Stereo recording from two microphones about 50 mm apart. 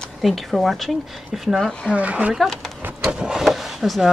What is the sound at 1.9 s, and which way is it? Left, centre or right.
Speech, right.